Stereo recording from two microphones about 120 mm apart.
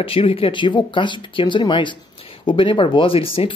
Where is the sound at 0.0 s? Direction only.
55° left (ahead or behind).